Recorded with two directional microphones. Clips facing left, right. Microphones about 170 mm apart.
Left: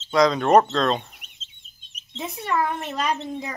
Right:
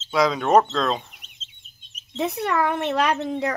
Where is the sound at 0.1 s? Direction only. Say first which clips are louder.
Left 1 dB; 5° right (ahead or behind).